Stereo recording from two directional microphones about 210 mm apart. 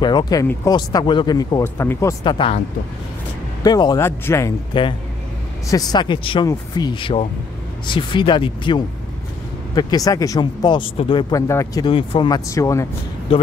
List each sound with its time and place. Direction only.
0.0 s speech: 20° left (ahead or behind)
3.6 s speech: 20° left (ahead or behind)